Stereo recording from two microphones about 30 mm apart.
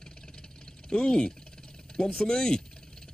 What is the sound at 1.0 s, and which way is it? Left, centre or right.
Speech, left.